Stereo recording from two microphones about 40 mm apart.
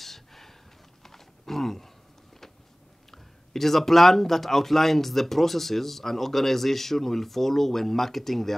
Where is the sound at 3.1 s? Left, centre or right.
Centre.